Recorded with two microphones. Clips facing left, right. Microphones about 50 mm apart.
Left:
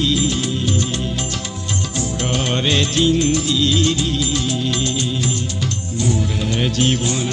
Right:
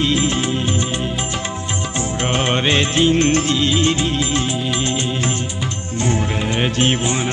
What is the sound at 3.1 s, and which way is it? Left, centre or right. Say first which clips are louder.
Music: right 2 dB; right.